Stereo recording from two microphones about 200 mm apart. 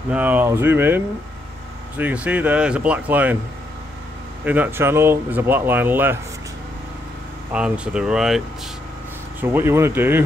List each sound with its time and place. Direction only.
0.1 s speech: 10° right (ahead or behind)
4.5 s speech: 10° right (ahead or behind)
7.5 s speech: 5° right (ahead or behind)
9.4 s speech: 10° right (ahead or behind)